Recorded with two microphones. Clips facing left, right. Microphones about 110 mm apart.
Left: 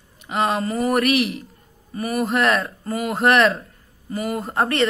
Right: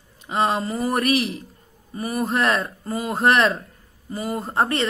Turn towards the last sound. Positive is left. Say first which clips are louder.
# left 2 dB
turn(degrees=-25)  # may be behind; listen again after turning